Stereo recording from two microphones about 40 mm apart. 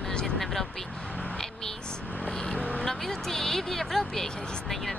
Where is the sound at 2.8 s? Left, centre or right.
Centre.